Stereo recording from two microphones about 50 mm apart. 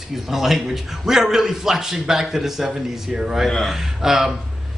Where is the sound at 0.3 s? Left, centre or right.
Centre.